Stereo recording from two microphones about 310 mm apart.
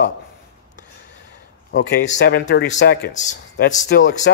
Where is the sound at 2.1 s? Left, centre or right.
Left.